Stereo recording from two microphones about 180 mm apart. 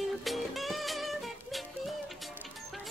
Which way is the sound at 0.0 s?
Centre (ahead or behind).